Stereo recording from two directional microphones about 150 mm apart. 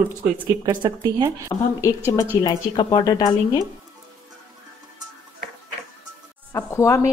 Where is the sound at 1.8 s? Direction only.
20° left (ahead or behind).